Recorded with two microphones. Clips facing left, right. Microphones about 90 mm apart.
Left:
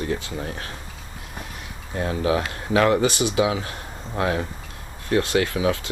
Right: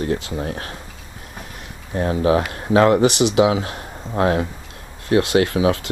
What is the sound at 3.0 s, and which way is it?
Speech, 70° right (ahead or behind).